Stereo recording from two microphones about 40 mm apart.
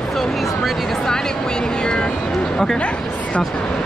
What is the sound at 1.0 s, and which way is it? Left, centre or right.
A woman's voice, centre.